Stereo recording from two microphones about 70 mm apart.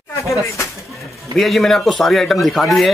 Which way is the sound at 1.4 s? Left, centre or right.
Centre.